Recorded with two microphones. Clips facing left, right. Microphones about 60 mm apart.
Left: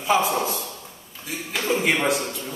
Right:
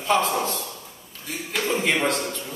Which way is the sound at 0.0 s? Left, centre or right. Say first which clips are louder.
Left 1 dB; centre.